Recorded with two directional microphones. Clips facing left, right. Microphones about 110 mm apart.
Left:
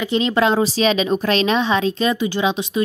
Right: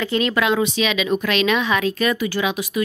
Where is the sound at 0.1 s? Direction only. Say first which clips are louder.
Left 3 dB; 30° left (ahead or behind).